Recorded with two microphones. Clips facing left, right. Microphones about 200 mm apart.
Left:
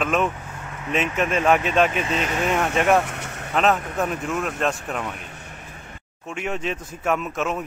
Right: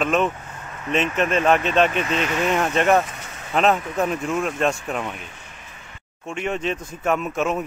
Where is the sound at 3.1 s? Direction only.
65° left (ahead or behind).